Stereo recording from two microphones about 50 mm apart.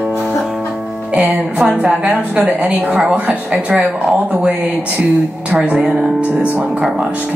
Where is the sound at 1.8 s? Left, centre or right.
Centre.